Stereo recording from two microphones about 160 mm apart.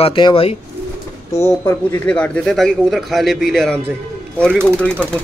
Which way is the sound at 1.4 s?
15° left (ahead or behind).